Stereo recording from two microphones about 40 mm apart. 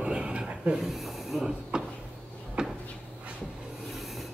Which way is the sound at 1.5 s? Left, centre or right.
Centre.